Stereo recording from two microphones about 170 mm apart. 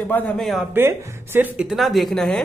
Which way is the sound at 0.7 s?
10° right (ahead or behind).